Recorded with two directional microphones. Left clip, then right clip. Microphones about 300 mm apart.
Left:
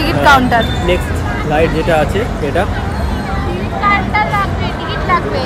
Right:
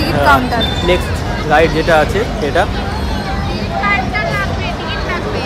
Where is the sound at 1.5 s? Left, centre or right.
Centre.